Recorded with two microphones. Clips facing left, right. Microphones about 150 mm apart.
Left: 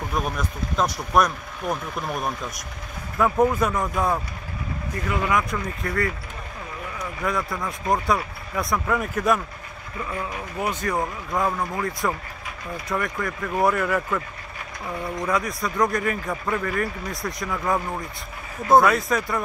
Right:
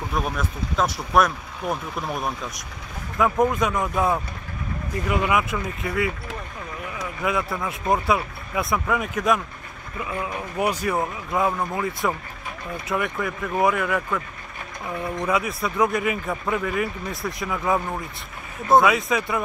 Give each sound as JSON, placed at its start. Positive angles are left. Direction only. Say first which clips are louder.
{"t": 0.1, "sound": "speech", "louder": "right 1 dB", "side_deg": 0}
{"t": 5.1, "sound": "speech", "louder": "right 1 dB", "side_deg": -20}
{"t": 5.5, "sound": "speech", "louder": "right 1 dB", "side_deg": -5}
{"t": 7.2, "sound": "speech", "louder": "right 2 dB", "side_deg": -5}
{"t": 10.2, "sound": "speech", "louder": "right 5 dB", "side_deg": -15}
{"t": 15.2, "sound": "speech", "louder": "right 1 dB", "side_deg": -5}